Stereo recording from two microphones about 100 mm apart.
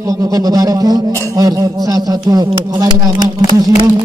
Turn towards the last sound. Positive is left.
turn(degrees=-40)  # may be behind; listen again after turning